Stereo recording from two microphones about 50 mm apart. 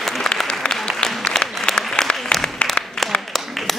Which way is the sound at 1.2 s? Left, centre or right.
Centre.